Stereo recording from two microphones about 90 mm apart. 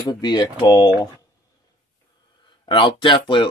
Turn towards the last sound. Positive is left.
turn(degrees=70)  # may be behind; listen again after turning